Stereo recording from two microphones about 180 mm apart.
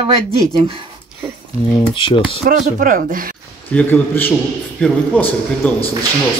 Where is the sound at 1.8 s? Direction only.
30° left (ahead or behind).